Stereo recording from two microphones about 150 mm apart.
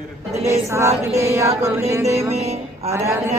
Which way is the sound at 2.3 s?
45° right (ahead or behind).